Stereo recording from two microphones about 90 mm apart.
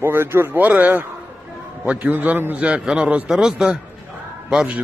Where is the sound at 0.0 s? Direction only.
25° right (ahead or behind); by 3.8 s 10° right (ahead or behind).